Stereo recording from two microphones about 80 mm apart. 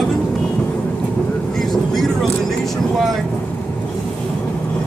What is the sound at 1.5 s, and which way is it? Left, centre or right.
Speech, centre.